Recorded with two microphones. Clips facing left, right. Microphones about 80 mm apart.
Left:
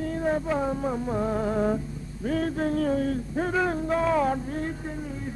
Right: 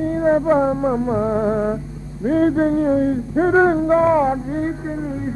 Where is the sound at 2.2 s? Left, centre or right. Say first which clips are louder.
Right 10 dB; right.